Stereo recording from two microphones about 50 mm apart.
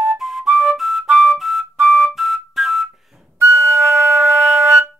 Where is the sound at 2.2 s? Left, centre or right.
Centre.